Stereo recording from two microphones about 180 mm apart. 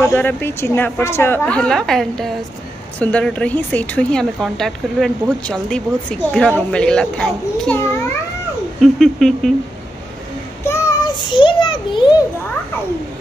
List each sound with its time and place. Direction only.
0.0 s a woman's voice: 10° left (ahead or behind)
8.8 s speech: centre (ahead or behind)
10.7 s child singing: 20° left (ahead or behind)